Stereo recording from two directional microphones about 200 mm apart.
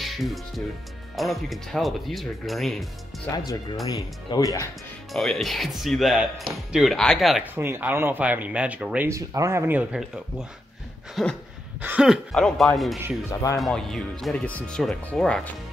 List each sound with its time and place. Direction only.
0.0 s music: centre (ahead or behind)
1.1 s speech: centre (ahead or behind)
3.8 s speech: 20° left (ahead or behind)
5.1 s speech: centre (ahead or behind)
13.3 s speech: 15° left (ahead or behind)
13.6 s speech: centre (ahead or behind)